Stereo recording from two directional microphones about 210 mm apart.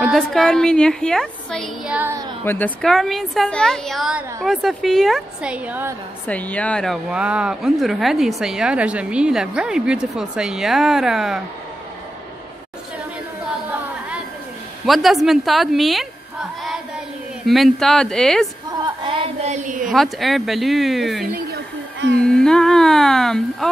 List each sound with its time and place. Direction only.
0.0 s speech: centre (ahead or behind)
2.4 s speech: 10° left (ahead or behind); by 5.9 s 10° right (ahead or behind)
6.2 s speech: 5° left (ahead or behind)
14.9 s speech: centre (ahead or behind)
17.5 s speech: centre (ahead or behind)
18.7 s a sound: 25° right (ahead or behind)
19.9 s speech: centre (ahead or behind)